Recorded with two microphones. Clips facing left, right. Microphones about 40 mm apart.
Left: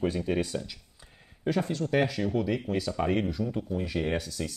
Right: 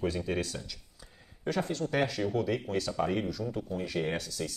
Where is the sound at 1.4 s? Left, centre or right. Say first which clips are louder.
Left 3 dB; centre.